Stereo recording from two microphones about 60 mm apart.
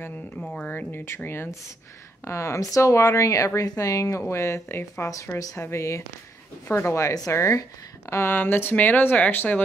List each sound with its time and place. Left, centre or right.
0.7 s speech: left
1.0 s speech: left
2.2 s speech: left
4.3 s speech: left